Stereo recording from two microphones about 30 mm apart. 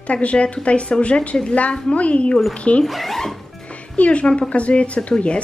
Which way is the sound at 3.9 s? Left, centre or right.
Left.